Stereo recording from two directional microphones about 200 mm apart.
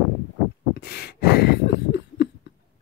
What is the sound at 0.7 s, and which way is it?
Cough, 55° left (ahead or behind).